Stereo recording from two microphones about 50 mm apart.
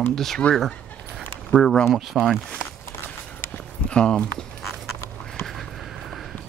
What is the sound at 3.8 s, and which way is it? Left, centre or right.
Speech, left.